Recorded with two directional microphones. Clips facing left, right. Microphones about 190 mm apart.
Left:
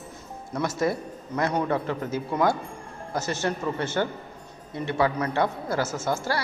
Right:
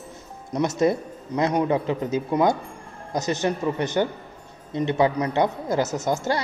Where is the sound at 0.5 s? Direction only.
20° right (ahead or behind).